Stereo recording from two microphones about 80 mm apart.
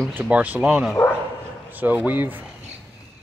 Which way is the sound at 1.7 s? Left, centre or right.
Right.